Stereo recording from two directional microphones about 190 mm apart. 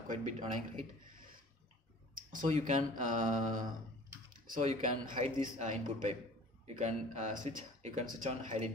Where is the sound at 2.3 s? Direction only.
40° right (ahead or behind).